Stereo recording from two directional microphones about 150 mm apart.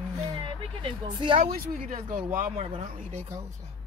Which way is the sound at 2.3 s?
60° right (ahead or behind).